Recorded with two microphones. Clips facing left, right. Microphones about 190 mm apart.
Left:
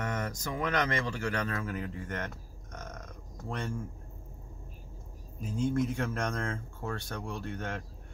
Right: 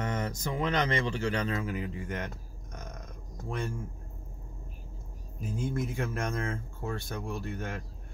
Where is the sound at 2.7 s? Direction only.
10° right (ahead or behind).